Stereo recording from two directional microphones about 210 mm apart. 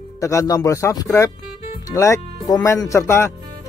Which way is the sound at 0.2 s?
15° left (ahead or behind).